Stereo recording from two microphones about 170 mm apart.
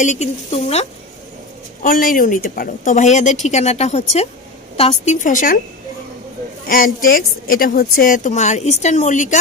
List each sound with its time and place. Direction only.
0.0 s a woman's voice: 45° left (ahead or behind)
1.8 s a woman's voice: 55° left (ahead or behind)
6.7 s a woman's voice: 55° left (ahead or behind)